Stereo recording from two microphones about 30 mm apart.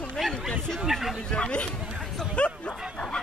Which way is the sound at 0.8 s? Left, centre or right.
Centre.